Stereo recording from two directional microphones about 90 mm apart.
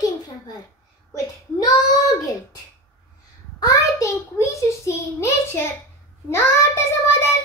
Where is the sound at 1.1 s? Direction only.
45° left (ahead or behind).